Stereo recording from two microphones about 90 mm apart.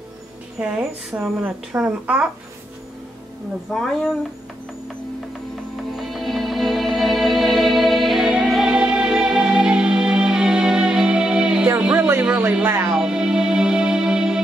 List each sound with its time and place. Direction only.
0.6 s speech: 10° right (ahead or behind)
1.1 s speech: 20° right (ahead or behind)
3.7 s speech: 5° left (ahead or behind)
5.9 s music: centre (ahead or behind)